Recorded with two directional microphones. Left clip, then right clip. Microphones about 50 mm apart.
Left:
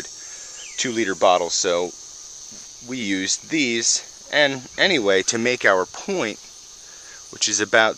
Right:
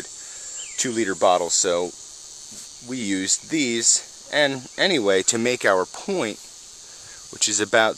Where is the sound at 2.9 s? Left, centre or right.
Right.